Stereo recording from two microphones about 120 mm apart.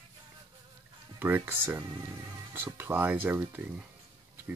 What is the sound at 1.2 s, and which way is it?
Speech, 15° right (ahead or behind).